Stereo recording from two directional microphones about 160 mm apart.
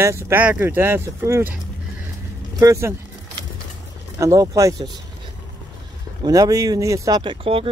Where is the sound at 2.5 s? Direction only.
20° right (ahead or behind).